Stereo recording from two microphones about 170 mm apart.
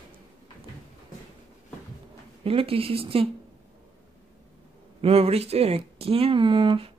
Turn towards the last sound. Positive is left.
turn(degrees=-30)  # may be behind; listen again after turning